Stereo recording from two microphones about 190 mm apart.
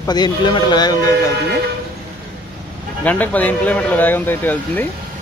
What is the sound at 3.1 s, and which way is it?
Speech, 10° left (ahead or behind).